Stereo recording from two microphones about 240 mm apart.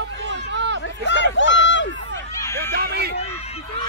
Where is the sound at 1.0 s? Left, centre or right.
Left.